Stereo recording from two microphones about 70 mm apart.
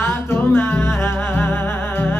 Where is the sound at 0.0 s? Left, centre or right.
Left.